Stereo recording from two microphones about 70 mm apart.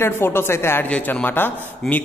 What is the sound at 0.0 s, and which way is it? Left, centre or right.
Speech, left.